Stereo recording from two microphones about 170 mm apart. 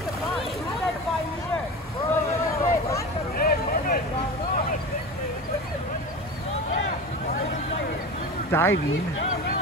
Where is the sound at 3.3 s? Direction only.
60° left (ahead or behind).